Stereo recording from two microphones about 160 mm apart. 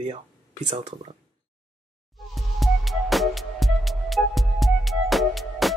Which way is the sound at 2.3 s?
Centre (ahead or behind).